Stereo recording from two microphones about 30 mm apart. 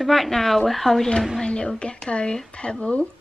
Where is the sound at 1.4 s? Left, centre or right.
Left.